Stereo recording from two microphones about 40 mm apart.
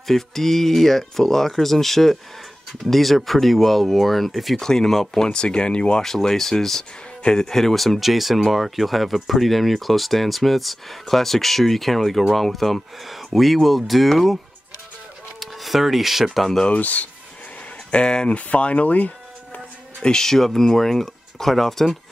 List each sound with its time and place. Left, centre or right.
0.0 s speech: centre
4.6 s speech: centre
6.0 s speech: centre
15.4 s speech: centre
16.3 s speech: centre
16.7 s speech: left
17.9 s speech: left
18.3 s speech: left
20.0 s speech: centre